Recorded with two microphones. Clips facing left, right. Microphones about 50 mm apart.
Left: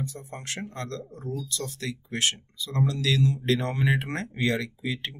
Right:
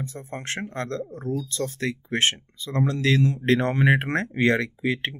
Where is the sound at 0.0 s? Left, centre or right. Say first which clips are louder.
Right 3 dB; right.